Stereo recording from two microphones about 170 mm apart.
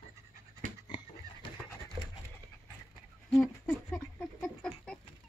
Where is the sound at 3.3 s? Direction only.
5° left (ahead or behind).